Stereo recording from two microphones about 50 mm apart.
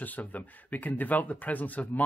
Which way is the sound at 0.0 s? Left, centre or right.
Left.